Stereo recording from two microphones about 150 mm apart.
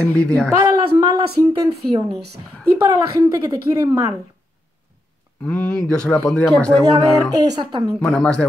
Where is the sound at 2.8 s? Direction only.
20° right (ahead or behind).